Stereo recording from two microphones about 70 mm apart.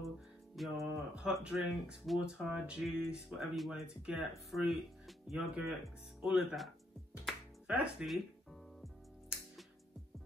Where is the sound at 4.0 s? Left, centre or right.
Centre.